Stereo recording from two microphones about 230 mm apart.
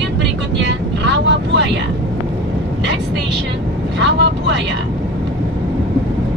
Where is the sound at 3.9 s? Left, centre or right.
Right.